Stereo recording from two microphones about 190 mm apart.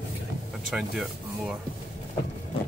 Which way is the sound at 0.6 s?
Centre (ahead or behind).